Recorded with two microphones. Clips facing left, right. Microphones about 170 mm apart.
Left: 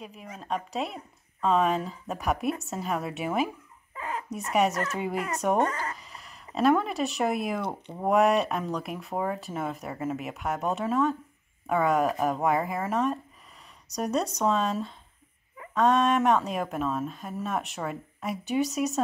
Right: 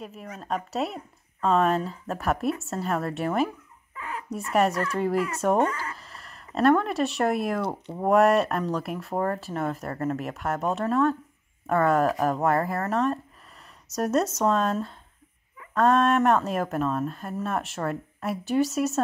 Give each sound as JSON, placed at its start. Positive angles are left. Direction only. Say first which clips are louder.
{"t": 0.0, "sound": "speech", "louder": "right 3 dB", "side_deg": 0}
{"t": 3.9, "sound": "dog", "louder": "left 2 dB", "side_deg": 30}
{"t": 4.3, "sound": "speech", "louder": "right 2 dB", "side_deg": 0}